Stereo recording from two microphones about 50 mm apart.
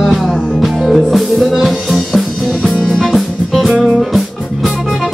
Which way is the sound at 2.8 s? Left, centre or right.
Centre.